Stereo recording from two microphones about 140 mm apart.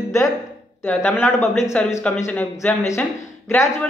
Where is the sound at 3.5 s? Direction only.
15° left (ahead or behind).